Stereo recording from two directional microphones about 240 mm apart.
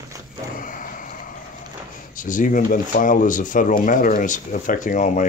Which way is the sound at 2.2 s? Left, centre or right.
Left.